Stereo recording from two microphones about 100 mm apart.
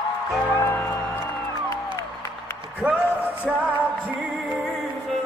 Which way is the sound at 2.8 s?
15° right (ahead or behind).